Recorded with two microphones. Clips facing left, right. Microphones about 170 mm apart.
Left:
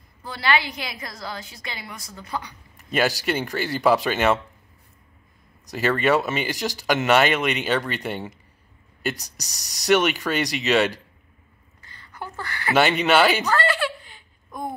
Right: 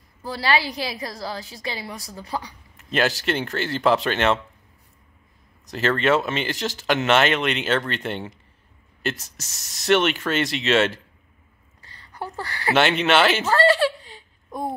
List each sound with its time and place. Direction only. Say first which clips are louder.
0.2 s a woman's voice: right 1 dB; 35° right (ahead or behind)
2.8 s speech: even; centre (ahead or behind)
5.7 s speech: even; centre (ahead or behind)
11.8 s a sound: right 3 dB; 35° right (ahead or behind)
12.7 s speech: left 1 dB; centre (ahead or behind)
13.6 s a sound: right 6 dB; 35° right (ahead or behind)